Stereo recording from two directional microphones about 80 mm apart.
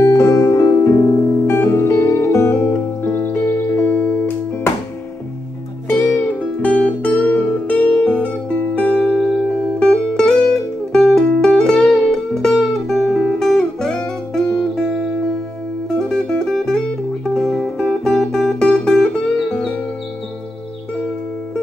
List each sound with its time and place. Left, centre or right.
0.0 s music: left
5.9 s music: left